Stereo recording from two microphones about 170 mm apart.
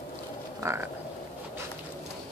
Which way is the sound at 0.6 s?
20° right (ahead or behind).